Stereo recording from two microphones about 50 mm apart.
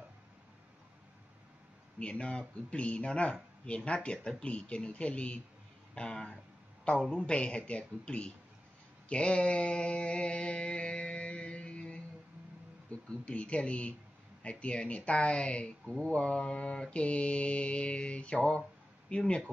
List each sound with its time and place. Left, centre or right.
2.0 s speech: left
9.1 s mantra: left
13.1 s speech: left